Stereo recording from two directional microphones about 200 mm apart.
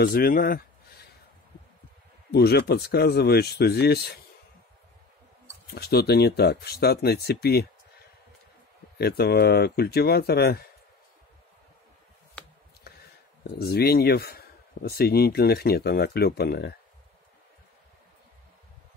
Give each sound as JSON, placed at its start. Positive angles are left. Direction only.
{"t": 0.0, "sound": "speech", "side_deg": 50}
{"t": 2.3, "sound": "speech", "side_deg": 55}
{"t": 5.8, "sound": "speech", "side_deg": 55}
{"t": 8.9, "sound": "speech", "side_deg": 50}
{"t": 12.9, "sound": "a sound", "side_deg": 50}
{"t": 13.4, "sound": "speech", "side_deg": 50}